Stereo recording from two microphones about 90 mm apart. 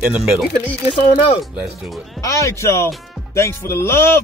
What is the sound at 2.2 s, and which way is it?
Speech, 35° left (ahead or behind).